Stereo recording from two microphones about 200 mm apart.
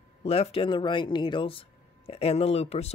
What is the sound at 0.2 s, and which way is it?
Speech, 30° left (ahead or behind).